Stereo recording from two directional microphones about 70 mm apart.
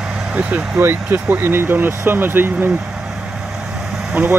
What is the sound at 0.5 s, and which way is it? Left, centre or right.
Speech, right.